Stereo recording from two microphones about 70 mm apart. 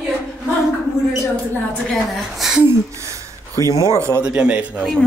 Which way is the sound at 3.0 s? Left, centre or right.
Right.